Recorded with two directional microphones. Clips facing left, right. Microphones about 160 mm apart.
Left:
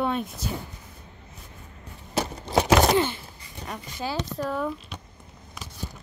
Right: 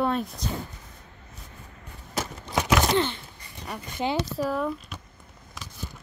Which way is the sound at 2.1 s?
35° left (ahead or behind).